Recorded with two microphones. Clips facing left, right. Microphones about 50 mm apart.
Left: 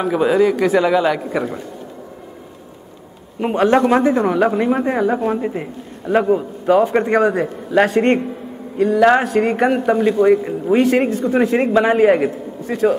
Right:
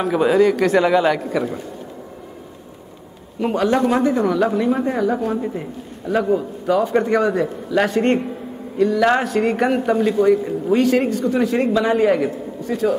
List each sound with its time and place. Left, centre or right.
0.0 s speech: centre
1.3 s a man's voice: centre
3.3 s a man's voice: left
10.2 s speech: left